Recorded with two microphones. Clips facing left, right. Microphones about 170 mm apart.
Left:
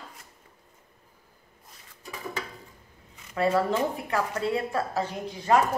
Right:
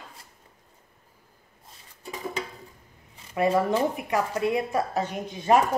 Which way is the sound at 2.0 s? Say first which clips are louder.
Right 3 dB; 20° right (ahead or behind).